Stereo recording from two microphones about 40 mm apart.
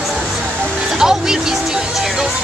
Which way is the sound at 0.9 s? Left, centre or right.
Centre.